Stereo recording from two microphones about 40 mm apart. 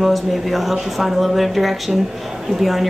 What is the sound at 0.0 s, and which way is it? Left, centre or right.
A woman's voice, centre.